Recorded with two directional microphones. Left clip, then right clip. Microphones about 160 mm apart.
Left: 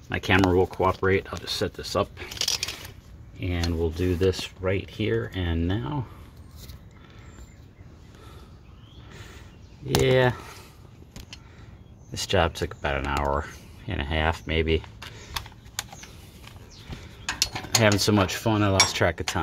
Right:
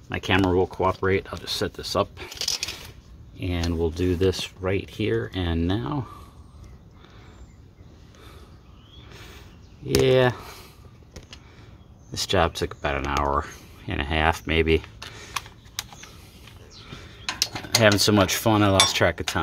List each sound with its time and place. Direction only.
0.1 s speech: 10° left (ahead or behind); by 2.2 s 10° right (ahead or behind)
3.3 s speech: 20° right (ahead or behind)
9.1 s a sound: 10° right (ahead or behind)
10.0 s speech: 10° right (ahead or behind)
12.1 s speech: 10° right (ahead or behind)
15.1 s a sound: 25° right (ahead or behind)
17.5 s cutlery: 5° right (ahead or behind)
18.2 s speech: 25° right (ahead or behind)